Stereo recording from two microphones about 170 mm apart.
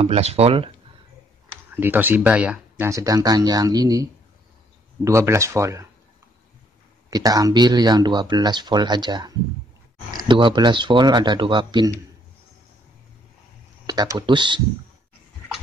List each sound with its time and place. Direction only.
0.0 s speech: 35° right (ahead or behind)
1.8 s speech: 10° right (ahead or behind)
2.9 s speech: 20° right (ahead or behind)
7.1 s speech: 20° right (ahead or behind)
13.8 s speech: 25° right (ahead or behind)